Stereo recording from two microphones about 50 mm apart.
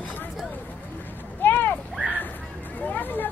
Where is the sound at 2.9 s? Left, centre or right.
Left.